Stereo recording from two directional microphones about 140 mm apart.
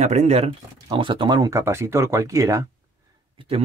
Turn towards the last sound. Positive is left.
turn(degrees=-40)  # may be behind; listen again after turning